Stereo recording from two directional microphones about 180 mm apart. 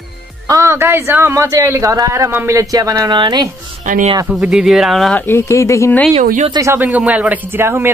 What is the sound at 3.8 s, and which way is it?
Speech, 45° right (ahead or behind).